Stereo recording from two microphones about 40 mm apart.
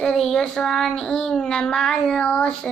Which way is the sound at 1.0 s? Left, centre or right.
Centre.